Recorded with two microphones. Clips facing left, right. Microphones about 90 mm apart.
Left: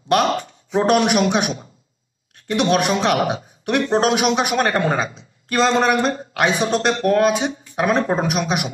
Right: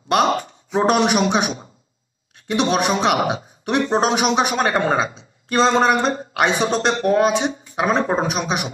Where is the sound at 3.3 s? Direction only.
20° right (ahead or behind).